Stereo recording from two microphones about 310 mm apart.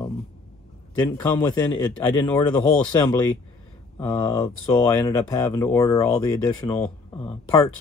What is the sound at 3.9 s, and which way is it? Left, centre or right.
Speech, centre.